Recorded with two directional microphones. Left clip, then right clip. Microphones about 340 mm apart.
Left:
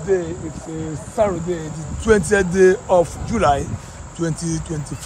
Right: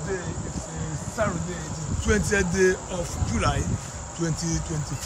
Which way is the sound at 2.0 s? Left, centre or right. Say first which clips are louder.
Left 8 dB; centre.